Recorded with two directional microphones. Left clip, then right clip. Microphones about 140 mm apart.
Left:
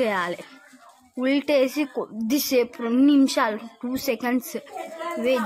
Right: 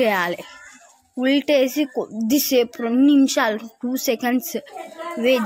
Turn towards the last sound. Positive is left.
turn(degrees=0)  # may be behind; listen again after turning